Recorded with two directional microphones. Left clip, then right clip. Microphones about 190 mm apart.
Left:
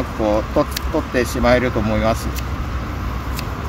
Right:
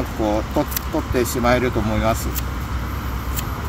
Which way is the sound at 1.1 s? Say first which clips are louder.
Left 2 dB; 25° left (ahead or behind).